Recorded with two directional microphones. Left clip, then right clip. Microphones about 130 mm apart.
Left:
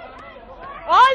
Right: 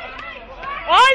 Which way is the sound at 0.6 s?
15° left (ahead or behind).